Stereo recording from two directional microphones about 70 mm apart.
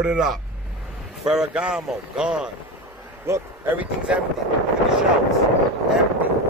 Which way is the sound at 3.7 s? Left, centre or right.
Centre.